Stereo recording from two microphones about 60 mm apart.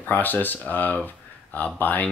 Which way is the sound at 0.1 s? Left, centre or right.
Left.